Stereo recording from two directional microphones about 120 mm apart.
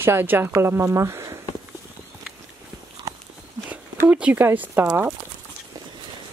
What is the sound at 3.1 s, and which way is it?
Walk, 30° right (ahead or behind).